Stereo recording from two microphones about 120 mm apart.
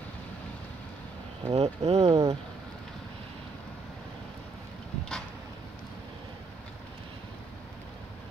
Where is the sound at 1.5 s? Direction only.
60° right (ahead or behind).